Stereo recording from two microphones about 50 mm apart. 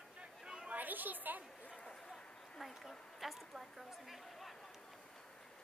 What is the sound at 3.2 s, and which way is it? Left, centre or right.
A woman's voice, centre.